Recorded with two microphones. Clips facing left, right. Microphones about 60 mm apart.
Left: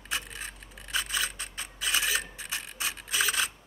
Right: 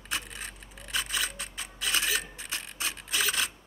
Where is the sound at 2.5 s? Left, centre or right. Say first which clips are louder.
Left 1 dB; centre.